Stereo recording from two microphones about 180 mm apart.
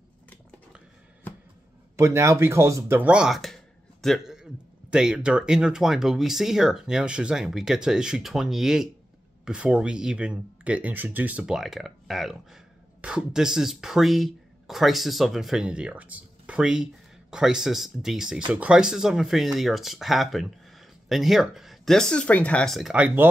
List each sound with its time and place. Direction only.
2.0 s speech: 15° right (ahead or behind)